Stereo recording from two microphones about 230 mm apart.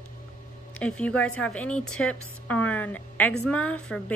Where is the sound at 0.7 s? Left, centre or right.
Centre.